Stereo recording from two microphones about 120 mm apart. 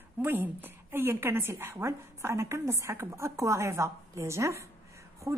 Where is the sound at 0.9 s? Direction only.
20° right (ahead or behind).